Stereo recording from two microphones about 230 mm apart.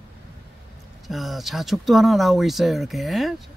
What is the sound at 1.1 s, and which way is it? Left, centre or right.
Speech, centre.